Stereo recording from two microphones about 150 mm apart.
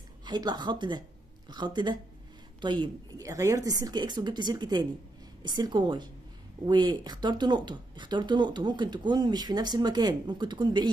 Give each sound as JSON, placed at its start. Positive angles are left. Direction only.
{"t": 0.2, "sound": "a woman's voice", "side_deg": -30}
{"t": 3.3, "sound": "speech", "side_deg": -20}